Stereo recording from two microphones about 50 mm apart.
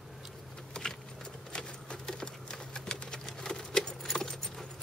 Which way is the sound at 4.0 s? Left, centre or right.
Centre.